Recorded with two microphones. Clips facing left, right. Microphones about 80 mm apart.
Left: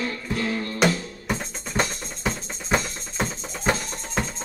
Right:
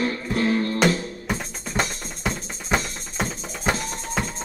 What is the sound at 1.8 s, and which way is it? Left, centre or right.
Music, centre.